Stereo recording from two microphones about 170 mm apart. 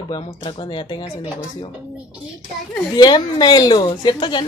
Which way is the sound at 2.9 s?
25° left (ahead or behind).